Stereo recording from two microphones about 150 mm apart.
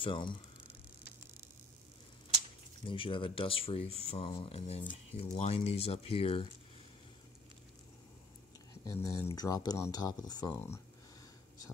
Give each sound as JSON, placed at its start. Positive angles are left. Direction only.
{"t": 0.0, "sound": "speech", "side_deg": 35}
{"t": 2.8, "sound": "speech", "side_deg": 35}
{"t": 8.8, "sound": "speech", "side_deg": 20}